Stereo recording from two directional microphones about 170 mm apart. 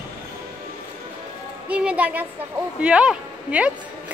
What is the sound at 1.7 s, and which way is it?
A woman's voice, 5° right (ahead or behind).